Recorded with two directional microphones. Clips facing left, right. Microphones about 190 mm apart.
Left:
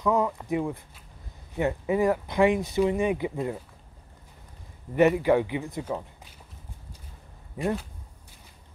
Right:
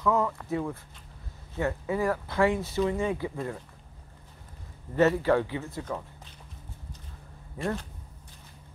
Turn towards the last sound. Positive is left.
turn(degrees=15)  # may be behind; listen again after turning